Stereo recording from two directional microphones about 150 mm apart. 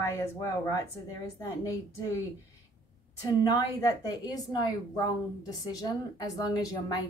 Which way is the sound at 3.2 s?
25° left (ahead or behind).